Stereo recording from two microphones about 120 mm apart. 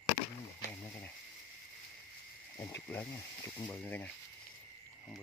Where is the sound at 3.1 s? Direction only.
30° left (ahead or behind).